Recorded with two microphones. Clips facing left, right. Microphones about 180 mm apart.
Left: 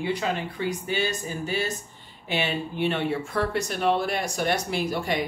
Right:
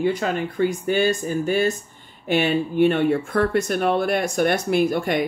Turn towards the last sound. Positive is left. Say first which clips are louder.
# right 7 dB
turn(degrees=-55)  # may be behind; listen again after turning